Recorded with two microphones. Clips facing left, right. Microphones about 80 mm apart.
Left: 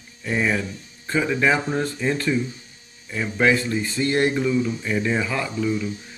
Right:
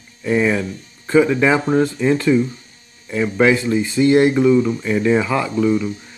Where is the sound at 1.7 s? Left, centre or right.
Right.